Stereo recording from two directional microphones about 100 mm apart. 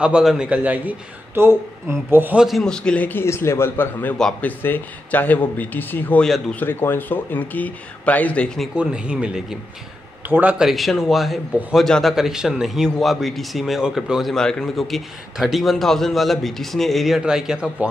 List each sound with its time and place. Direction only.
0.0 s speech: 5° right (ahead or behind)
0.5 s speech: 15° right (ahead or behind)
2.3 s a man's voice: centre (ahead or behind)
8.7 s speech: 10° right (ahead or behind)
10.2 s speech: 20° right (ahead or behind)
10.6 s a man's voice: centre (ahead or behind)